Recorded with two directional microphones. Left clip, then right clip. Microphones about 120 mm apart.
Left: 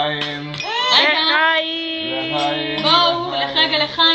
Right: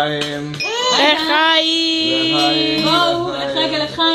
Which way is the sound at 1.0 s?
50° right (ahead or behind).